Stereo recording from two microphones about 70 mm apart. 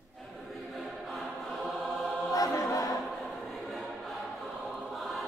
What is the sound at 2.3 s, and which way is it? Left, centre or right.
Choir, left.